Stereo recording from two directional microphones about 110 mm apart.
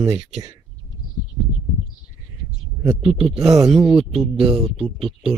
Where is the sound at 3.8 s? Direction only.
55° right (ahead or behind).